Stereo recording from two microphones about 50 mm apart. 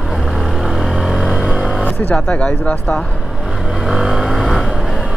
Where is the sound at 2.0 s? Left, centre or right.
Left.